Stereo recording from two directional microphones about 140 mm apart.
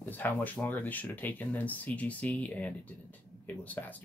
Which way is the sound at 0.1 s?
10° left (ahead or behind).